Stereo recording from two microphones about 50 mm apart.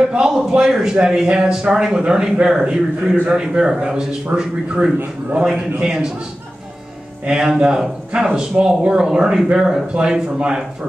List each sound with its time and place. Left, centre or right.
0.1 s a sound: centre
0.5 s a man's voice: centre
7.2 s speech: centre